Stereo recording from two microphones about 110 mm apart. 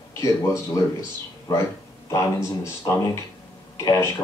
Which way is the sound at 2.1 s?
25° left (ahead or behind).